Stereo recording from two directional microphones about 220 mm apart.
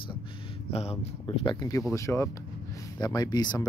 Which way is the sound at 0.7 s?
25° left (ahead or behind).